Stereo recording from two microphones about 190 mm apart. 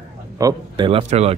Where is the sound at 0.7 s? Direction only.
30° right (ahead or behind).